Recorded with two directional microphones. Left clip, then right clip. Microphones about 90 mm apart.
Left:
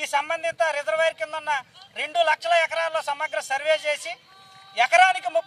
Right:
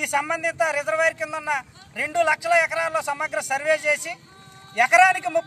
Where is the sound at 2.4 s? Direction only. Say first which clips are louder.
Right 1 dB; 50° right (ahead or behind).